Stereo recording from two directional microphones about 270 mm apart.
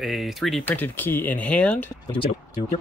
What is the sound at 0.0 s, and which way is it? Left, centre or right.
Speech, centre.